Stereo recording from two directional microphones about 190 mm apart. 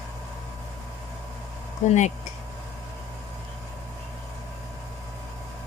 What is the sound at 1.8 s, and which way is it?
Speech, 40° left (ahead or behind).